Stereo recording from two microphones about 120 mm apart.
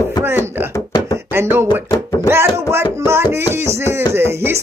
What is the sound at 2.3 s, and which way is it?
Music, 20° right (ahead or behind).